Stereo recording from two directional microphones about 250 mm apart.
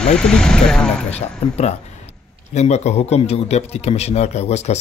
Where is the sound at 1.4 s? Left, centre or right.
Left.